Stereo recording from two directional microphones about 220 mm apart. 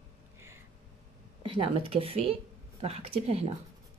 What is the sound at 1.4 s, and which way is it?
Speech, 25° right (ahead or behind).